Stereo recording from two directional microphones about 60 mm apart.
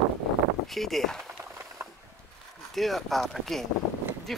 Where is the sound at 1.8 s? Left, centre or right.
Right.